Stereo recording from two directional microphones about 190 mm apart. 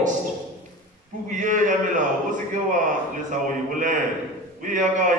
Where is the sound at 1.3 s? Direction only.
40° right (ahead or behind).